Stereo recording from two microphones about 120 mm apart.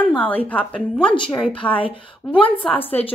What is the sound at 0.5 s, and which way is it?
Speech, 10° left (ahead or behind).